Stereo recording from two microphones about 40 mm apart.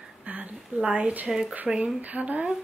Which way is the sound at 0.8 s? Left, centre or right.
Centre.